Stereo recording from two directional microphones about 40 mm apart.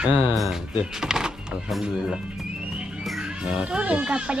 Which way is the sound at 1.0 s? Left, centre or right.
Centre.